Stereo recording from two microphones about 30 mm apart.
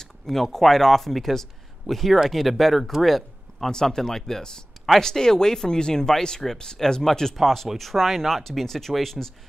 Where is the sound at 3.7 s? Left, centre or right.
Centre.